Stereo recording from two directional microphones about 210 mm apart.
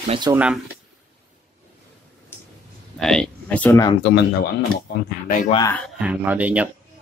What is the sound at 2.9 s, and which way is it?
Speech, centre (ahead or behind).